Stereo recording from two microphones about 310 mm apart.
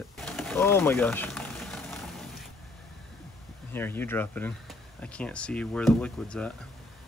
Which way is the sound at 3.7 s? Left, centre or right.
Centre.